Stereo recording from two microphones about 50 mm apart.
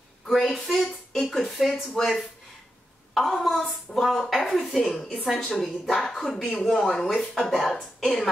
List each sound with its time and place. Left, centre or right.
0.3 s a sound: centre
1.1 s music: centre
1.4 s a woman's voice: centre